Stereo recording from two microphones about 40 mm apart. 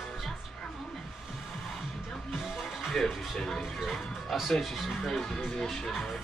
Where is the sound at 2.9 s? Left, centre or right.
Centre.